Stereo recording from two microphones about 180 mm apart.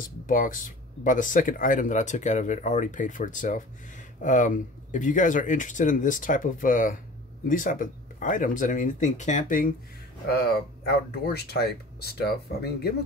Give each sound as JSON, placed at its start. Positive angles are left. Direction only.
{"t": 0.3, "sound": "speech", "side_deg": 50}
{"t": 11.3, "sound": "speech", "side_deg": 60}